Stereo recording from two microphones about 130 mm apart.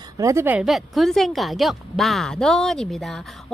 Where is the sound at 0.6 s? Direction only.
Centre (ahead or behind).